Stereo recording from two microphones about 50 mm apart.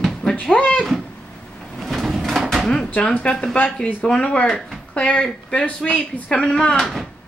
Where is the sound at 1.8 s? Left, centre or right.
Centre.